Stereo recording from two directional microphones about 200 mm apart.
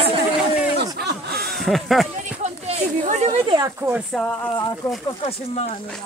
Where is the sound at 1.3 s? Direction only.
Centre (ahead or behind).